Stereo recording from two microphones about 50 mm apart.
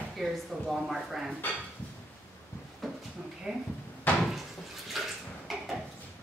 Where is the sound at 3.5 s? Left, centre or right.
Centre.